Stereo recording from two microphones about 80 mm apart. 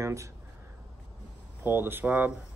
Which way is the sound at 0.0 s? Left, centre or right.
Right.